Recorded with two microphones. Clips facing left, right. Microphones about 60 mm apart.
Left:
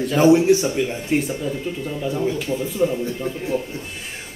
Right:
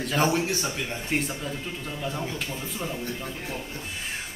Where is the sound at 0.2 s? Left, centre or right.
Centre.